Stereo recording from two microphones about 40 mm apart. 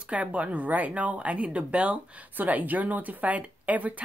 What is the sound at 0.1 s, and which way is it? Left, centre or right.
A woman's voice, right.